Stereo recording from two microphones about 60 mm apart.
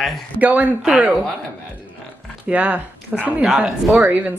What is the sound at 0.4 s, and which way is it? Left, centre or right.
Speech, right.